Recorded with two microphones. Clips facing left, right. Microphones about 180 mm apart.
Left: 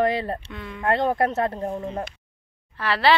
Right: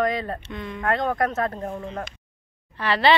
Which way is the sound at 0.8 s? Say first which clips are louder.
Left 2 dB; 30° left (ahead or behind).